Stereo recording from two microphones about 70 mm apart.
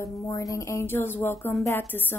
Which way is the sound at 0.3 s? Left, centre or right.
Left.